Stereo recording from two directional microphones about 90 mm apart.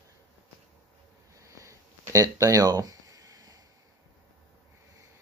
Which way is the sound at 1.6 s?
35° right (ahead or behind).